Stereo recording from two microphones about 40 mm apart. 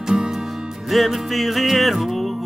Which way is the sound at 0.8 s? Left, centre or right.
Centre.